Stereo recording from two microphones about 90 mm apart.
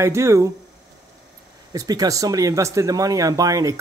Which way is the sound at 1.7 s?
45° right (ahead or behind).